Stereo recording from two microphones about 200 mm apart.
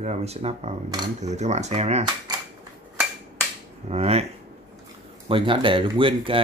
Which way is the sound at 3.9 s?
30° right (ahead or behind).